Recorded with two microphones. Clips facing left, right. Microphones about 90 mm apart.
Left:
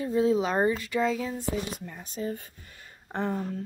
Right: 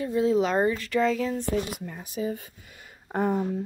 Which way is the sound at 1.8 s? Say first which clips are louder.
Right 3 dB; 10° right (ahead or behind).